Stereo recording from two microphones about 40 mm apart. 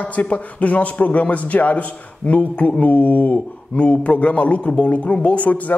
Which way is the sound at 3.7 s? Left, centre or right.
Left.